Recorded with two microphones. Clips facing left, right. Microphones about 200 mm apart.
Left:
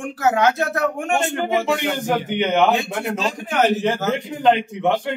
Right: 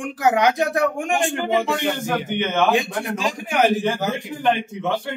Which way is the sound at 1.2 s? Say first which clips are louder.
Even; 15° left (ahead or behind).